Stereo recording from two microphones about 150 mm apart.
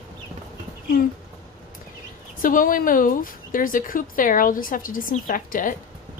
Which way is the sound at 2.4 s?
65° left (ahead or behind).